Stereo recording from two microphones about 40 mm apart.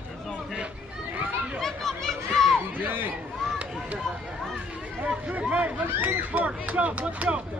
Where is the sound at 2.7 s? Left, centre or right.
Right.